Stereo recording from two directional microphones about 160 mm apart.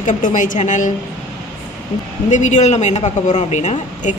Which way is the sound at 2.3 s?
50° left (ahead or behind).